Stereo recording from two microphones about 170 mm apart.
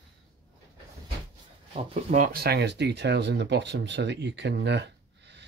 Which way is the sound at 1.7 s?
45° right (ahead or behind).